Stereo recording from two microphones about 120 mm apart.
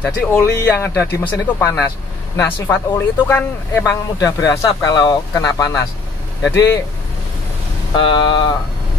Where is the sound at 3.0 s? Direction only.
20° left (ahead or behind).